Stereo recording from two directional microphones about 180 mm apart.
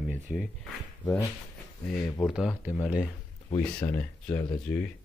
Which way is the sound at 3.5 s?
10° left (ahead or behind).